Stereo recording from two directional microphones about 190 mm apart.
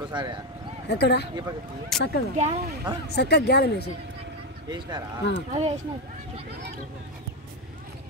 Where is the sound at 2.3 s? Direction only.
40° right (ahead or behind).